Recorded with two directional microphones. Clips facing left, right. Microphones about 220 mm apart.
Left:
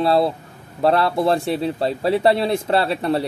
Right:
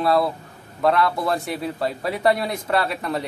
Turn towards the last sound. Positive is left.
turn(degrees=30)  # may be behind; listen again after turning